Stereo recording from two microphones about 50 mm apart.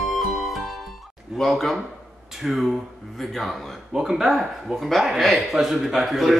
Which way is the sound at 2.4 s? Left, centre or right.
Centre.